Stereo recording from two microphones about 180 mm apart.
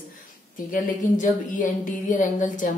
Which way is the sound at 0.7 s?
50° left (ahead or behind).